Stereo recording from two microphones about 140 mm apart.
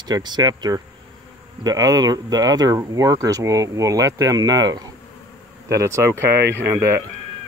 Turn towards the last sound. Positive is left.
turn(degrees=-20)  # may be behind; listen again after turning